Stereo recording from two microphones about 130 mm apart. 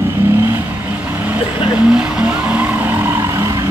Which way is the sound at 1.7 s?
5° right (ahead or behind).